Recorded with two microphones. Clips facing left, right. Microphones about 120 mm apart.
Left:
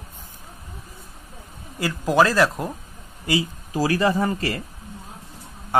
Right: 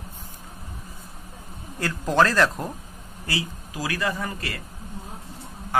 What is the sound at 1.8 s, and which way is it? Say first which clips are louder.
Speech: left 2 dB; 5° left (ahead or behind).